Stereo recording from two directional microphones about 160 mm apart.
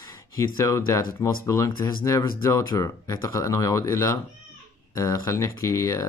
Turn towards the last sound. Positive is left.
turn(degrees=20)  # may be behind; listen again after turning